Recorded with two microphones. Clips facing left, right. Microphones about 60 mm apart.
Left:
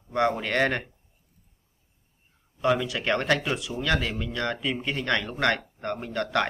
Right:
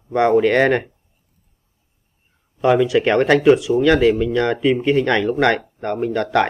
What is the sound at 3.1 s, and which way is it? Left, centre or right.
Speech, right.